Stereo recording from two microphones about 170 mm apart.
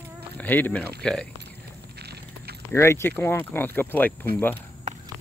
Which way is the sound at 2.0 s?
70° right (ahead or behind).